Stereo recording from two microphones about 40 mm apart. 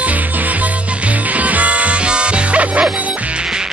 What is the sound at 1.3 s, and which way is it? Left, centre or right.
Music, right.